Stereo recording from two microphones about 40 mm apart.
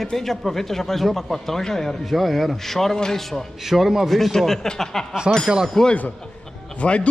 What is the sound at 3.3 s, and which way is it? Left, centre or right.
Speech, centre.